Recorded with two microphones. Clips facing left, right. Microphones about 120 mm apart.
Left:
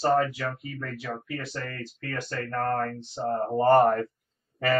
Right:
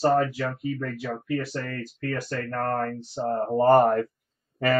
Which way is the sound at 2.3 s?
40° right (ahead or behind).